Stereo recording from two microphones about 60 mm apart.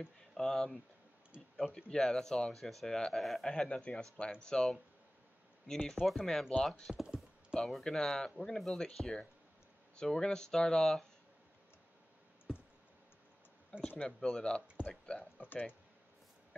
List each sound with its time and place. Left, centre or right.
0.0 s speech: centre
1.3 s speech: centre
1.9 s speech: centre
3.4 s speech: centre
5.9 s speech: centre
6.5 s speech: centre
6.9 s speech: centre
7.5 s speech: centre
12.5 s clicking: centre
13.8 s speech: centre
15.4 s speech: left